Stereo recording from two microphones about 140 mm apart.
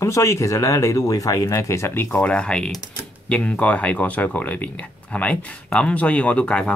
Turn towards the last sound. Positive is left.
turn(degrees=10)  # may be behind; listen again after turning